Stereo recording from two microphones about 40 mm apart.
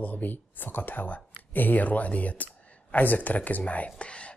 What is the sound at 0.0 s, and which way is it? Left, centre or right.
Speech, left.